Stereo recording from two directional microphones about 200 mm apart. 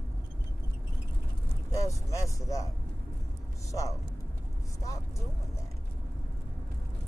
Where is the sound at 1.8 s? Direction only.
15° left (ahead or behind).